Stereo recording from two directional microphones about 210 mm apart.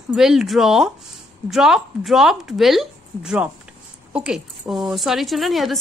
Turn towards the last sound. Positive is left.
turn(degrees=0)  # may be behind; listen again after turning